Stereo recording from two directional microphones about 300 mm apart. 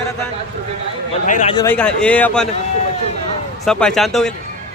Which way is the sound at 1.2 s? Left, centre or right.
Left.